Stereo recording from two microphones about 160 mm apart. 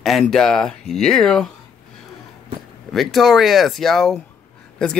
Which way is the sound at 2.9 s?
Centre (ahead or behind).